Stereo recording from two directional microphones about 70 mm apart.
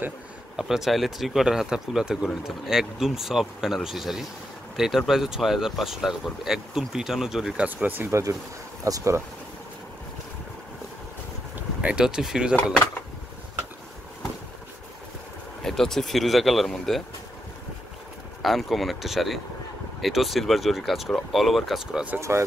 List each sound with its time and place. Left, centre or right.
0.6 s speech: centre
7.6 s speech: right
8.1 s speech: right
11.8 s speech: centre
15.6 s speech: centre
18.4 s speech: centre